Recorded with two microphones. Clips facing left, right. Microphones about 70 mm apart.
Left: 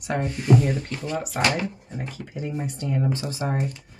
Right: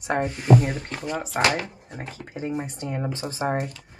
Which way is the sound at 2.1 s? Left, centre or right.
Right.